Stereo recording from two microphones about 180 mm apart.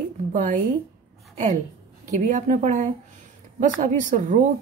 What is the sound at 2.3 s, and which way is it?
A woman's voice, 45° right (ahead or behind).